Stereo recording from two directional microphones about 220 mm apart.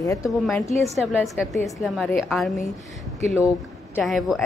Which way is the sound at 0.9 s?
Centre (ahead or behind).